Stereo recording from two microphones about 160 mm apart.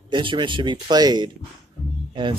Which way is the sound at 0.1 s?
30° right (ahead or behind).